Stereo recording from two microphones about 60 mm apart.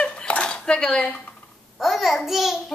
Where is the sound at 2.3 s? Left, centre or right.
Centre.